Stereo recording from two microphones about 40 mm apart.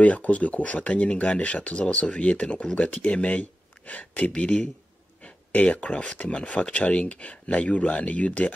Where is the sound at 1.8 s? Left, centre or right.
Left.